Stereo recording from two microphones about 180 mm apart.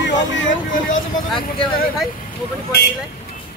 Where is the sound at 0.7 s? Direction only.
45° left (ahead or behind).